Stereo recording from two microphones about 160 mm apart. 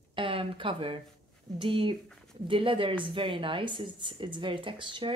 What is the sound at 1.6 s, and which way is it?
A woman's voice, 35° right (ahead or behind).